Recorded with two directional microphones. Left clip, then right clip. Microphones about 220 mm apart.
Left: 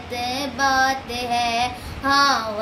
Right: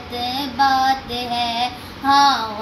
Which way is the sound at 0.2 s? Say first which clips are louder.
Right 4 dB; 20° left (ahead or behind).